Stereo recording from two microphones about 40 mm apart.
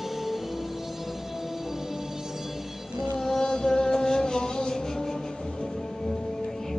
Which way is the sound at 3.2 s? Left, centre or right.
Centre.